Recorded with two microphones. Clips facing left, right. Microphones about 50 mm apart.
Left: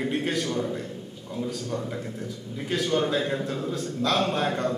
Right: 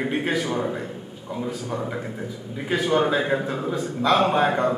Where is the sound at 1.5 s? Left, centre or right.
Centre.